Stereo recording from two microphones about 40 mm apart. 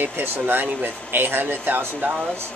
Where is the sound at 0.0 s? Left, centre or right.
Right.